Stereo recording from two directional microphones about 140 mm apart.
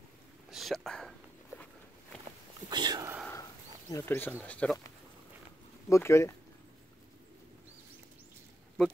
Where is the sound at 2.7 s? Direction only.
30° right (ahead or behind).